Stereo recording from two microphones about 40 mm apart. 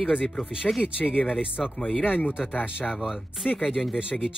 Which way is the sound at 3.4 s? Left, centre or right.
Left.